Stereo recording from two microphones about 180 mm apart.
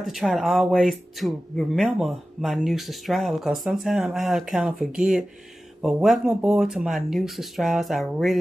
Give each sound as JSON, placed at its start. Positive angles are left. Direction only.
{"t": 0.0, "sound": "speech", "side_deg": 0}